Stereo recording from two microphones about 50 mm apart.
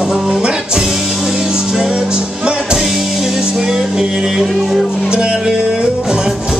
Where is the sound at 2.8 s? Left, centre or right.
Centre.